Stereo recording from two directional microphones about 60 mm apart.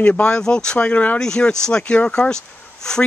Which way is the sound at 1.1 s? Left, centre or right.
Centre.